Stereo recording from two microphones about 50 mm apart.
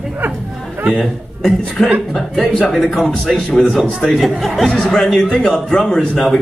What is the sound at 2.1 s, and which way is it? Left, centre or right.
A man's voice, centre.